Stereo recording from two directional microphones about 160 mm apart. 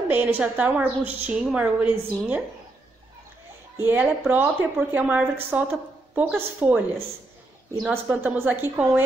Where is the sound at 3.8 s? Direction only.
10° right (ahead or behind).